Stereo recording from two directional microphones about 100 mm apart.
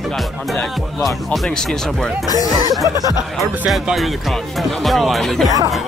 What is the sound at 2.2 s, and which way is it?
Speech, 40° left (ahead or behind).